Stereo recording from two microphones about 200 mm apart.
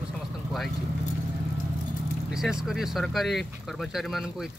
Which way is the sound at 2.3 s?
Centre (ahead or behind).